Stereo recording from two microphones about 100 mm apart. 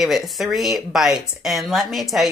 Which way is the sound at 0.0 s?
Centre (ahead or behind).